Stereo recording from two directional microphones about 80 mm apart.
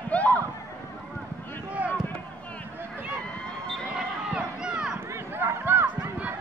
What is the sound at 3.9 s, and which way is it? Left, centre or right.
Run, centre.